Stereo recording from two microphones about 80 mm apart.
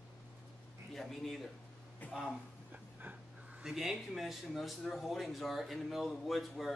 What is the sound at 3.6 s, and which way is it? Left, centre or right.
Speech, centre.